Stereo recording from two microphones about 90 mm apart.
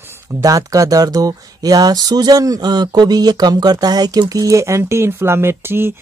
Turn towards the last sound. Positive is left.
turn(degrees=-25)  # may be behind; listen again after turning